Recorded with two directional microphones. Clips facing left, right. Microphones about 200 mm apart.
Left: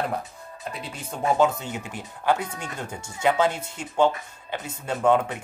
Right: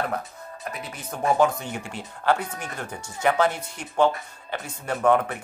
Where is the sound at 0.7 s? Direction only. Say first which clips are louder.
Even; 25° left (ahead or behind).